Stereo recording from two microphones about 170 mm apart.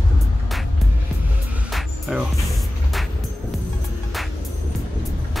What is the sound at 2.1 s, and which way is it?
Music, 5° right (ahead or behind).